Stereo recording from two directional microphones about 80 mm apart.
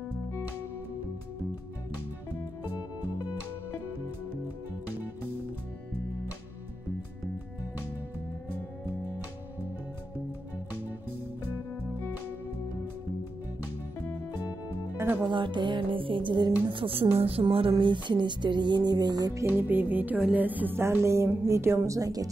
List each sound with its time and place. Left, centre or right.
14.0 s music: left
15.0 s music: right
15.3 s music: right
17.7 s music: right
19.4 s a woman's voice: right